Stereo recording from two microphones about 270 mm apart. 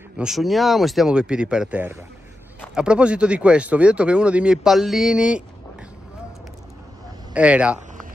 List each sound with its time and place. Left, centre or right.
0.2 s speech: centre
7.3 s speech: centre